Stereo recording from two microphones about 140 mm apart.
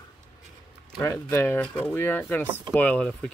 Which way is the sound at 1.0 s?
20° left (ahead or behind).